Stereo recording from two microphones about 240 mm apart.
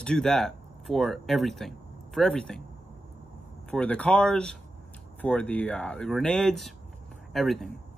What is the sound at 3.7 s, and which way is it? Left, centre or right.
A man's voice, centre.